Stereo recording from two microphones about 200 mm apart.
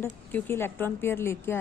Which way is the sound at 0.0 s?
10° left (ahead or behind).